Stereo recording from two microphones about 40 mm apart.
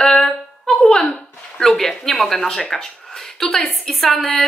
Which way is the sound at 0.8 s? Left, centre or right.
Left.